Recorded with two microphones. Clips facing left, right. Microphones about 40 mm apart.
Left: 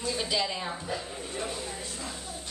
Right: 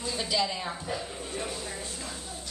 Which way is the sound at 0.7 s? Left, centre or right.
Centre.